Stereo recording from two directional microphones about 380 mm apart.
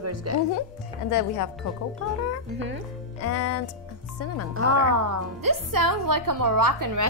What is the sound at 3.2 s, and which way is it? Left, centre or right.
Speech, left.